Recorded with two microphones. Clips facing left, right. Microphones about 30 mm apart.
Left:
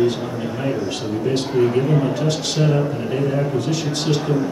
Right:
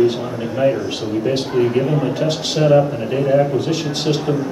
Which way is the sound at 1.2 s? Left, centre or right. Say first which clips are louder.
Even; centre.